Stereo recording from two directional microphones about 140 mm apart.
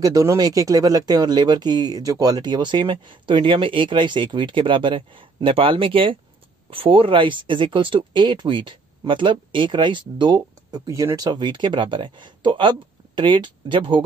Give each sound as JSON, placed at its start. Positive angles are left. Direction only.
{"t": 0.0, "sound": "speech", "side_deg": -25}